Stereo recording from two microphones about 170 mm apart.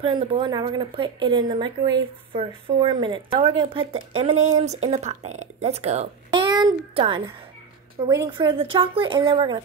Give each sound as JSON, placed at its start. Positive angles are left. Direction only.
{"t": 0.0, "sound": "speech", "side_deg": -30}
{"t": 6.3, "sound": "speech", "side_deg": -25}